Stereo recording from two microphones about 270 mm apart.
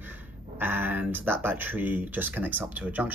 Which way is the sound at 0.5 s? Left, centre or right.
Centre.